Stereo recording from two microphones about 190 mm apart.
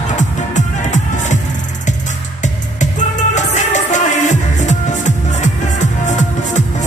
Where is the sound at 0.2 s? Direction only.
40° left (ahead or behind).